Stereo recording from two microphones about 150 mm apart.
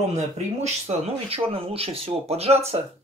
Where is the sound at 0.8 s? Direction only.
40° right (ahead or behind).